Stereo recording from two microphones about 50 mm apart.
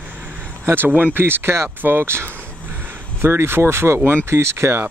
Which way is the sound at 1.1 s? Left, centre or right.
Right.